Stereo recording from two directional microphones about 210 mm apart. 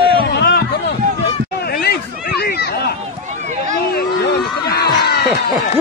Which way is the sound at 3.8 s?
50° left (ahead or behind).